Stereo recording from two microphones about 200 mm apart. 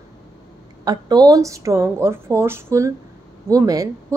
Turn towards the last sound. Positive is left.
turn(degrees=-15)  # may be behind; listen again after turning